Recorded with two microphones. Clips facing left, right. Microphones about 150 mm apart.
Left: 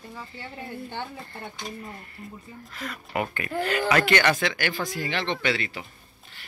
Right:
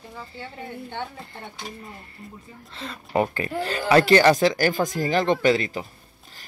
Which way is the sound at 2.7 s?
30° right (ahead or behind).